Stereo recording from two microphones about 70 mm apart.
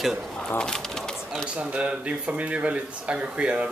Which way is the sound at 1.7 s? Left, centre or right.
Centre.